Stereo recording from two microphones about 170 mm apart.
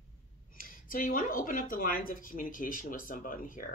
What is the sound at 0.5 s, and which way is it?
Speech, 55° left (ahead or behind).